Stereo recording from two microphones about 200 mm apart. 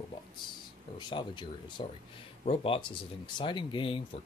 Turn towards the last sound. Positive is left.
turn(degrees=25)  # may be behind; listen again after turning